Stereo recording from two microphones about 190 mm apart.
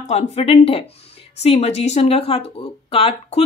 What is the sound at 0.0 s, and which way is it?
Speech, 35° left (ahead or behind).